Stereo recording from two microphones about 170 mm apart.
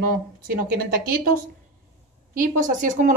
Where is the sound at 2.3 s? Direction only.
50° right (ahead or behind).